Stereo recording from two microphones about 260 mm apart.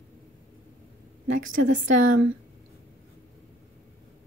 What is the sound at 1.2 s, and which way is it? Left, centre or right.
Speech, right.